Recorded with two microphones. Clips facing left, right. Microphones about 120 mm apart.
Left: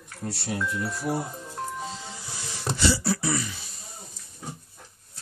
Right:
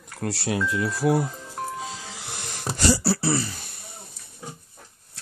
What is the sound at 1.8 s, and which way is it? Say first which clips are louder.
Music: right 1 dB; 90° right.